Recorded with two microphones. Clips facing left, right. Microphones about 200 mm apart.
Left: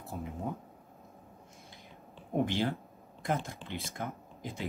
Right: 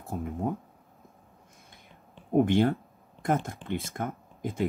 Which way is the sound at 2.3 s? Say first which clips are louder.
Right 8 dB; 55° right (ahead or behind).